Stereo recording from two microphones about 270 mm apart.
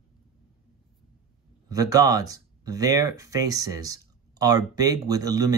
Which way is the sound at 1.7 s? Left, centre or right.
Centre.